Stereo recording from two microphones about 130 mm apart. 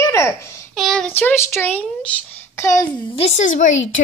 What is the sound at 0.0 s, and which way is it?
Babbling, 25° left (ahead or behind).